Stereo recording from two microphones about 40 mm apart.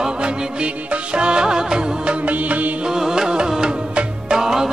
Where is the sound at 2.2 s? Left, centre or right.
Right.